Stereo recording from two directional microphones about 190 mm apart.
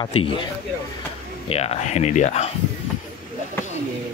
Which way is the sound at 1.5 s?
30° left (ahead or behind).